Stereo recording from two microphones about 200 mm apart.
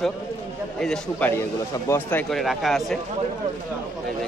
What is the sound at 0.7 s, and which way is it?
Speech, 5° left (ahead or behind).